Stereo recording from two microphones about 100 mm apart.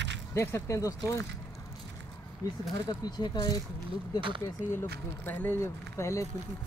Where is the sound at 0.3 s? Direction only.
25° left (ahead or behind).